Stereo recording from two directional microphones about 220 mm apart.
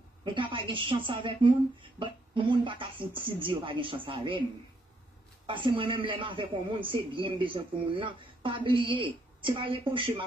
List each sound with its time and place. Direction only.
0.2 s a man's voice: 20° right (ahead or behind)
5.5 s a man's voice: 20° right (ahead or behind)